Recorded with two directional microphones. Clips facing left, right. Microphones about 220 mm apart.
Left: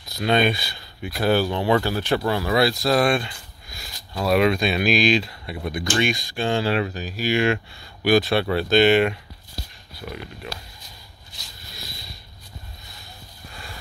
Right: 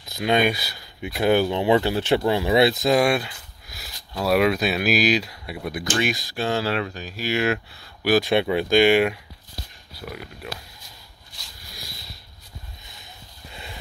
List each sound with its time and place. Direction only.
0.1 s speech: 15° right (ahead or behind)
8.2 s speech: 15° right (ahead or behind)
13.5 s a sound: 20° right (ahead or behind)